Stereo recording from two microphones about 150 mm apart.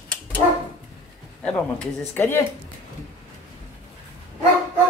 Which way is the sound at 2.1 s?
15° left (ahead or behind).